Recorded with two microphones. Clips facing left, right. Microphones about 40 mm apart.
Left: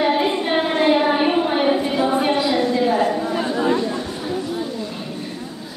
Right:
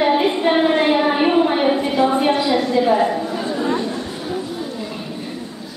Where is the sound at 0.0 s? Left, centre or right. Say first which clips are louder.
Right 3 dB; centre.